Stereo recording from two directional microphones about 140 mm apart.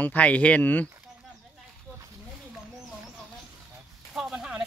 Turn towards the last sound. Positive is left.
turn(degrees=-5)  # may be behind; listen again after turning